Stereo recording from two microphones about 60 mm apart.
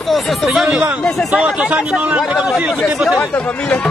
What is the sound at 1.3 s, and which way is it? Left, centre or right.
Speech, centre.